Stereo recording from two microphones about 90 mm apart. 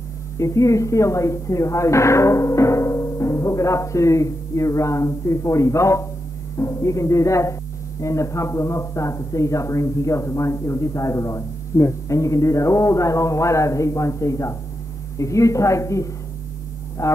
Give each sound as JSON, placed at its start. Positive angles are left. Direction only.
{"t": 0.4, "sound": "a man's voice", "side_deg": 35}